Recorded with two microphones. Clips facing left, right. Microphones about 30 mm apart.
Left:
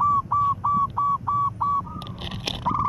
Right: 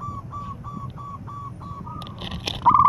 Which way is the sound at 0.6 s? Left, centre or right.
Left.